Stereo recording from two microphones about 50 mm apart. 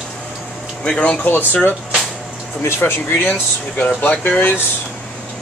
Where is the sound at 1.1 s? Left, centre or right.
Left.